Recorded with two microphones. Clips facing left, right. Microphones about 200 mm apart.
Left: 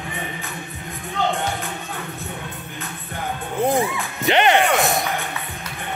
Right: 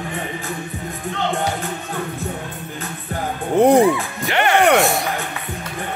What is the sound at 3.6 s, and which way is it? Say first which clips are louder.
Music: right 8 dB; 70° right (ahead or behind).